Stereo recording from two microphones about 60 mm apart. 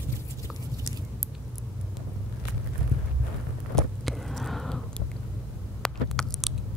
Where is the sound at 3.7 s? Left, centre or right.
Centre.